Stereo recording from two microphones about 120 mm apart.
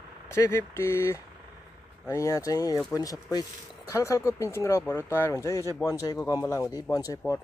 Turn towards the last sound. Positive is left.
turn(degrees=25)  # may be behind; listen again after turning